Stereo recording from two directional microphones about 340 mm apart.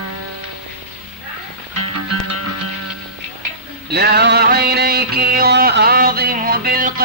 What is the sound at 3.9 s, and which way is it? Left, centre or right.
Music, right.